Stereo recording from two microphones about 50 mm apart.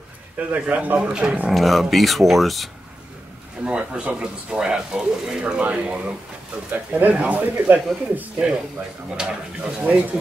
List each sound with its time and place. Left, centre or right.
0.6 s speech: right
1.0 s speech: centre
1.5 s speech: centre
3.6 s speech: right
5.4 s speech: right
9.1 s speech: centre
9.8 s speech: right